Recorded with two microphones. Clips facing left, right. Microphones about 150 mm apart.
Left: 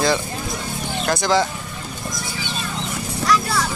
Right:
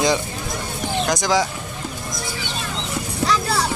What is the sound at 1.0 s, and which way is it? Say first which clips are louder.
Speech: left 2 dB; 15° right (ahead or behind).